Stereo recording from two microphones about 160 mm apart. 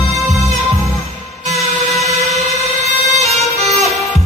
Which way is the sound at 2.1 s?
40° right (ahead or behind).